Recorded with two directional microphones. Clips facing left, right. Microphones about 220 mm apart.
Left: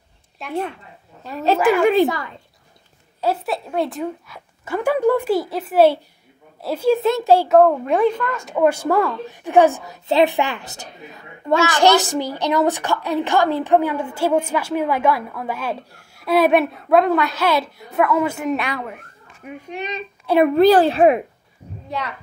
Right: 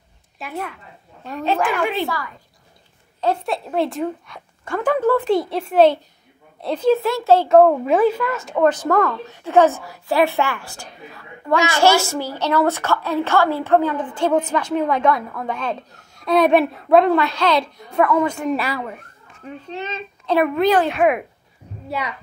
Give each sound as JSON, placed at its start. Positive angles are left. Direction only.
{"t": 0.4, "sound": "speech", "side_deg": 0}
{"t": 1.8, "sound": "a woman's voice", "side_deg": 45}
{"t": 2.0, "sound": "speech", "side_deg": 20}
{"t": 3.2, "sound": "a woman's voice", "side_deg": 5}
{"t": 7.0, "sound": "speech", "side_deg": 20}
{"t": 7.4, "sound": "speech", "side_deg": 0}
{"t": 8.5, "sound": "a woman's voice", "side_deg": 10}
{"t": 19.4, "sound": "a woman's voice", "side_deg": 15}
{"t": 20.4, "sound": "a woman's voice", "side_deg": 35}
{"t": 21.8, "sound": "a child's voice", "side_deg": -10}